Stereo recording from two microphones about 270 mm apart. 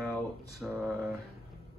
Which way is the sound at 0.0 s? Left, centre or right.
Centre.